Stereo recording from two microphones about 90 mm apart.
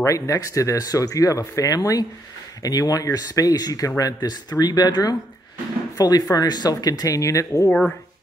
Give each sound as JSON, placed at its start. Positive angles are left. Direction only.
{"t": 0.0, "sound": "speech", "side_deg": 35}